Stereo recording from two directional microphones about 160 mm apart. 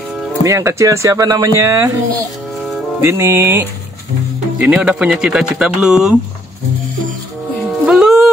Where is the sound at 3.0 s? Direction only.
15° right (ahead or behind).